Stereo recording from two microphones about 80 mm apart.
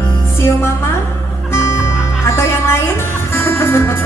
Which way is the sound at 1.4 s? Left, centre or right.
Left.